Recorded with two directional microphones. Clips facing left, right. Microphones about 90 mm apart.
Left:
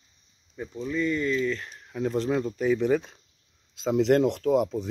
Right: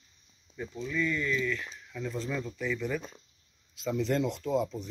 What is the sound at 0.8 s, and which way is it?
Speech, 35° left (ahead or behind).